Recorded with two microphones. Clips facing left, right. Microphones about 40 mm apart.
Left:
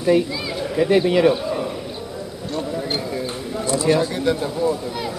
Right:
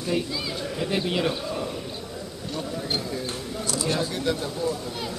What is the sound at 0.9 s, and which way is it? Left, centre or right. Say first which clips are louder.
Speech: left 10 dB; left.